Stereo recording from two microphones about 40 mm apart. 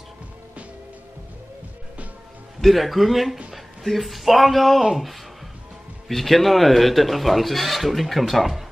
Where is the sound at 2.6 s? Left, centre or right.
Centre.